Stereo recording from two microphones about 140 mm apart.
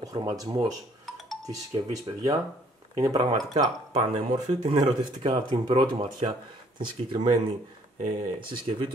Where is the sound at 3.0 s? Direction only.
30° right (ahead or behind).